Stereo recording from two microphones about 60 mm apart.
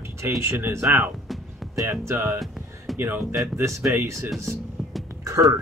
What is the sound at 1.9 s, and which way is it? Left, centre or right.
Speech, right.